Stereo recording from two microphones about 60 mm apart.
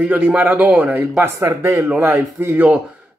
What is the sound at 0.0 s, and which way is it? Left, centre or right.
Speech, right.